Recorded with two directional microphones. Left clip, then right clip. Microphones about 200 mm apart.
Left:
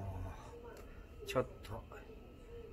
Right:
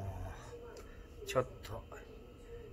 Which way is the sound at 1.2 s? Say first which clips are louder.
Right 2 dB; centre (ahead or behind).